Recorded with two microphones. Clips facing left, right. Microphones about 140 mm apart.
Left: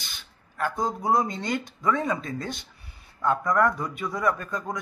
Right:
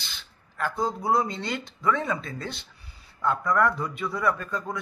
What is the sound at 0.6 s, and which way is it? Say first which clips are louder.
Speech: even; 15° left (ahead or behind).